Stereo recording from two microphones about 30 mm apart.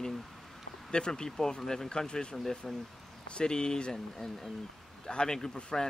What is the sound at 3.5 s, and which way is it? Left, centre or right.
Speech, left.